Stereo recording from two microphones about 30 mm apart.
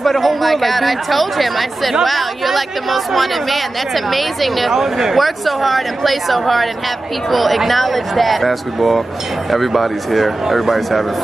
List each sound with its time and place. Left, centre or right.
0.0 s speech: centre
4.7 s speech: centre
5.1 s speech: centre